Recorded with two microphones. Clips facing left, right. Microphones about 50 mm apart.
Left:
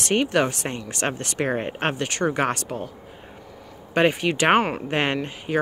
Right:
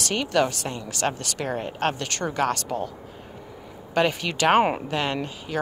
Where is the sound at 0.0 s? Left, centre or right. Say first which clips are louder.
Left 2 dB; left.